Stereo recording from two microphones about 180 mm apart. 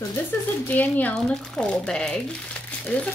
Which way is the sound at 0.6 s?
10° left (ahead or behind).